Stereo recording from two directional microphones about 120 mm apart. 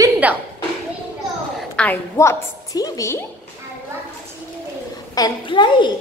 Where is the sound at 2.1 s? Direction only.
25° left (ahead or behind).